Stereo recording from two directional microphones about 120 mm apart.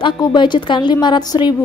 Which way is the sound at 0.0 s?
40° left (ahead or behind).